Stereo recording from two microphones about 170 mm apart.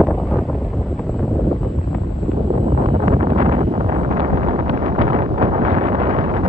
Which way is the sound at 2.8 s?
40° right (ahead or behind).